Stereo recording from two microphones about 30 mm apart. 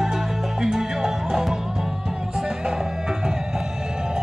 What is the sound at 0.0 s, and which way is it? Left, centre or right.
Music, centre.